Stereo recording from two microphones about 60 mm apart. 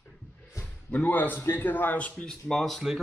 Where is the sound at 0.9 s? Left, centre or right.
Left.